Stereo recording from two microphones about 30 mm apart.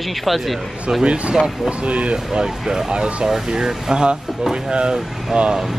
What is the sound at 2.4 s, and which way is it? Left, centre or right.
Speech, centre.